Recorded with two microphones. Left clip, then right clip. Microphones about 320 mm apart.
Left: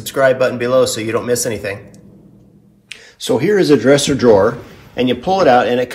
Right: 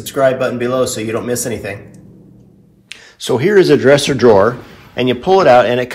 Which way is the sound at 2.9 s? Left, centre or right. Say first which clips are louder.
Even; right.